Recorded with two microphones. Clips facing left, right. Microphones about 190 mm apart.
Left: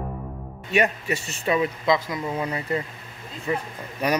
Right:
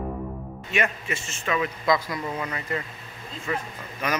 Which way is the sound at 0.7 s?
35° left (ahead or behind).